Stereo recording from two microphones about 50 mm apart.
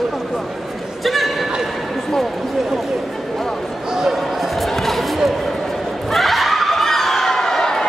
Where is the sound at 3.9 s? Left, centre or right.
Centre.